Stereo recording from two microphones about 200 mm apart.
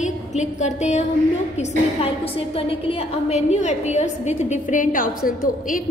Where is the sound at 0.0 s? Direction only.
35° left (ahead or behind).